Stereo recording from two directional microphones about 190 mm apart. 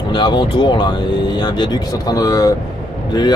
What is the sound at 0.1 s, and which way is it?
Speech, 25° left (ahead or behind).